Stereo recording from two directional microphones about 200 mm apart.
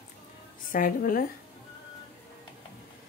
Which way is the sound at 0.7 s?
45° left (ahead or behind).